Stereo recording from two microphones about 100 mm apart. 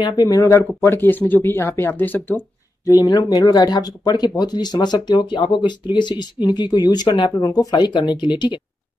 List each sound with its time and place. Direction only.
0.0 s speech: 40° left (ahead or behind); by 2.4 s 20° left (ahead or behind)
2.8 s speech: 40° left (ahead or behind)